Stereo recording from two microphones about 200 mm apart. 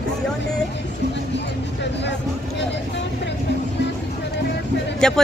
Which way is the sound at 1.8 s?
60° left (ahead or behind).